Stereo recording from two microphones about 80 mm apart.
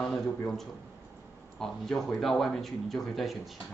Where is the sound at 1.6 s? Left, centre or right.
Centre.